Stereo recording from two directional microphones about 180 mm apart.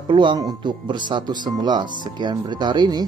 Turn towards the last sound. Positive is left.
turn(degrees=-25)  # may be behind; listen again after turning